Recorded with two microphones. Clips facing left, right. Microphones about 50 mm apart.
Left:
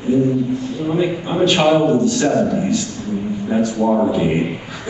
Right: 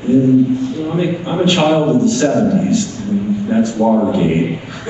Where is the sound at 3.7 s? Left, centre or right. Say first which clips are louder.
Right 3 dB; right.